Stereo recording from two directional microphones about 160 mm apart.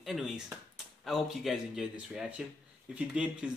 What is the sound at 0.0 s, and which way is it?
Speech, 5° right (ahead or behind).